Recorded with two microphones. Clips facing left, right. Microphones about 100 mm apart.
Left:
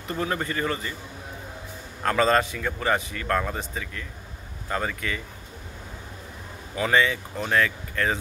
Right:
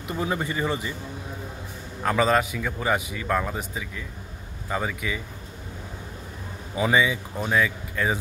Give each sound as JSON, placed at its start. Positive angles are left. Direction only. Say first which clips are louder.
{"t": 0.1, "sound": "a man's voice", "louder": "even", "side_deg": -10}
{"t": 2.0, "sound": "a man's voice", "louder": "even", "side_deg": -5}
{"t": 6.7, "sound": "a man's voice", "louder": "even", "side_deg": -10}